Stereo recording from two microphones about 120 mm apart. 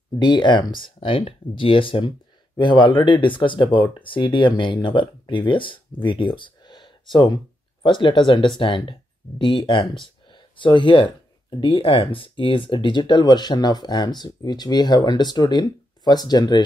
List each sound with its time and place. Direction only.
0.2 s speech: 40° left (ahead or behind)